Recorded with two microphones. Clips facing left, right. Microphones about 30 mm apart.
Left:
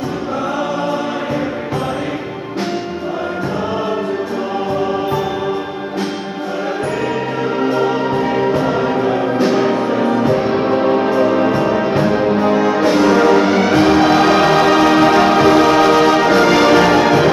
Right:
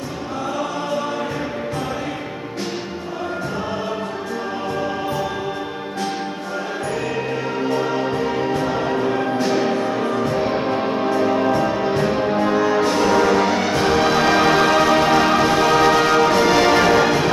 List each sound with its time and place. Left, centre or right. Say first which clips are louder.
7.6 s music: left 4 dB; centre